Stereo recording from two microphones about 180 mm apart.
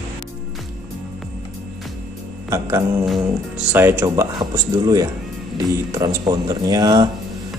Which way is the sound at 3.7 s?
10° right (ahead or behind).